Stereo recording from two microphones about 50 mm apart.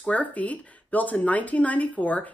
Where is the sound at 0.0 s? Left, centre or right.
Left.